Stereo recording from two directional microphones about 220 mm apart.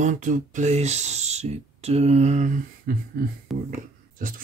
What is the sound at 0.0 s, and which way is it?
Speech, 35° right (ahead or behind).